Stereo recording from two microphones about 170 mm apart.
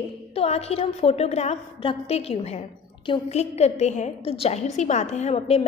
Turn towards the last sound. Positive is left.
turn(degrees=35)  # may be behind; listen again after turning